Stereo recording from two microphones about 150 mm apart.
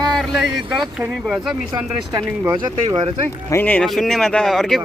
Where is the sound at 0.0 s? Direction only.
Centre (ahead or behind).